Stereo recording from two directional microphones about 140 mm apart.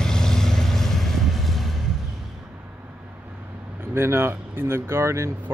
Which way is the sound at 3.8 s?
15° right (ahead or behind).